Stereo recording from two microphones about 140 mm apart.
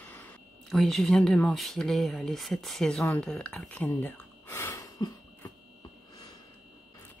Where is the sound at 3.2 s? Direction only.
5° left (ahead or behind); by 5.5 s 25° left (ahead or behind).